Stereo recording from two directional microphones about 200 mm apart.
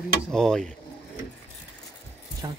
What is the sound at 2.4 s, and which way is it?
Speech, 20° right (ahead or behind).